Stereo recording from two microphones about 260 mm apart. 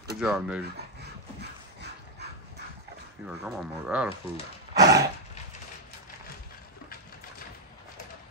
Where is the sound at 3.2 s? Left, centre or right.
Centre.